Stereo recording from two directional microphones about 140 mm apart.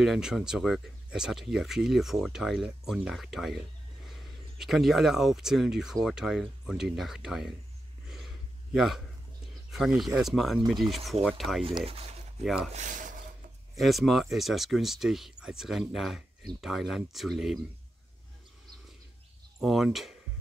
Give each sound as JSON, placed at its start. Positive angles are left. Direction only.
{"t": 0.0, "sound": "speech", "side_deg": -5}
{"t": 8.7, "sound": "speech", "side_deg": 0}
{"t": 11.6, "sound": "speech", "side_deg": -45}
{"t": 12.7, "sound": "speech", "side_deg": -65}
{"t": 13.7, "sound": "speech", "side_deg": 0}
{"t": 19.6, "sound": "speech", "side_deg": 0}